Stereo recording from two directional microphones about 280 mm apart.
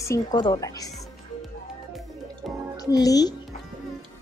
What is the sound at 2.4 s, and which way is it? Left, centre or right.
Music, centre.